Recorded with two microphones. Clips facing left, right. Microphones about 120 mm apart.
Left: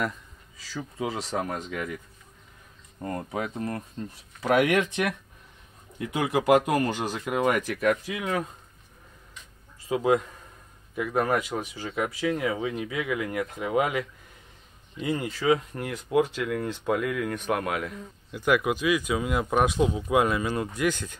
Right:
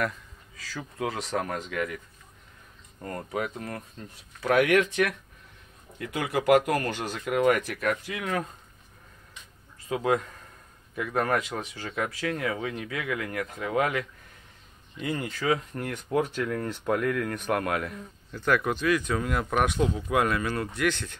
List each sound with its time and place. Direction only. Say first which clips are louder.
0.7 s speech: left 1 dB; 10° left (ahead or behind)
3.0 s speech: left 1 dB; 20° left (ahead or behind)
9.8 s speech: left 3 dB; 20° left (ahead or behind)